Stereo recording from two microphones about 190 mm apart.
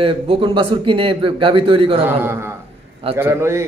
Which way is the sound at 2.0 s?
10° right (ahead or behind).